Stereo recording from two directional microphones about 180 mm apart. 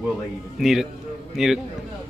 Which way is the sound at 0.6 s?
Centre (ahead or behind).